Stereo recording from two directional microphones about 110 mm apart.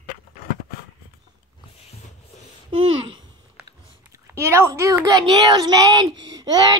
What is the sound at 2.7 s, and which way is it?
Babbling, 50° right (ahead or behind).